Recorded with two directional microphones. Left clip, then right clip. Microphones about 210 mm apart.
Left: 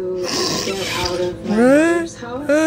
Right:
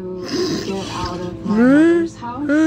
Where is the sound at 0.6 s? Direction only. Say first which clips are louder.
Left 3 dB; 20° left (ahead or behind).